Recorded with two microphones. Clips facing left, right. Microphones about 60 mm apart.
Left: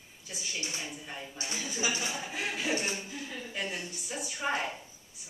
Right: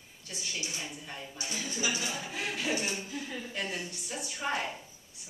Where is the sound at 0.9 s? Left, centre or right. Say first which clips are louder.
Left 1 dB; centre.